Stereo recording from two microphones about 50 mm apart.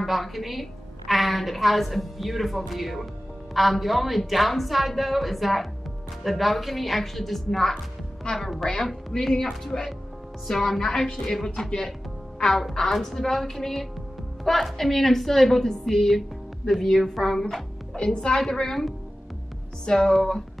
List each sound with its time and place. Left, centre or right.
0.0 s a woman's voice: centre
17.9 s a woman's voice: centre